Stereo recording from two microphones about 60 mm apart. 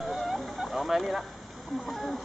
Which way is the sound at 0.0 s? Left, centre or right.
Centre.